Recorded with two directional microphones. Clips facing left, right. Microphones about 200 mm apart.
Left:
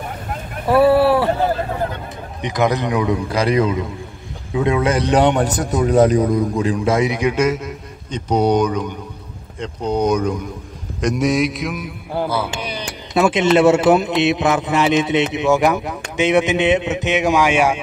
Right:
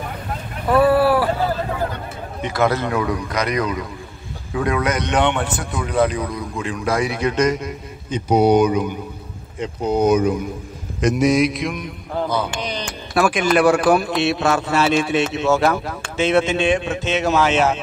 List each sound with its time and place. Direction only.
0.7 s a sound: 25° left (ahead or behind)
2.4 s a man's voice: 15° left (ahead or behind); by 6.5 s 45° left (ahead or behind)
6.6 s a man's voice: 30° left (ahead or behind); by 12.8 s 10° left (ahead or behind)
13.1 s a man's voice: 25° left (ahead or behind)